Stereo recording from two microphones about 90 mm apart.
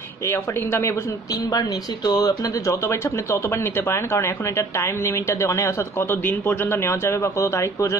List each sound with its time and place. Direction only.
0.3 s speech: 25° left (ahead or behind)
1.6 s speech: 50° left (ahead or behind); by 8.0 s 35° left (ahead or behind)